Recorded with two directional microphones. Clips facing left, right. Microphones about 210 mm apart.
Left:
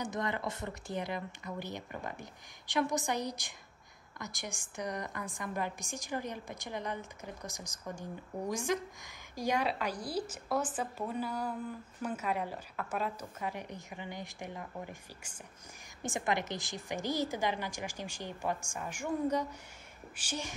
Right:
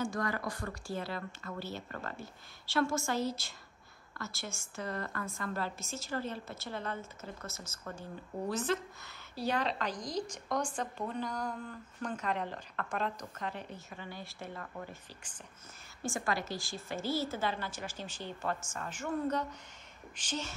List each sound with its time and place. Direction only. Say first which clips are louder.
0.0 s a woman's voice: right 1 dB; 20° left (ahead or behind)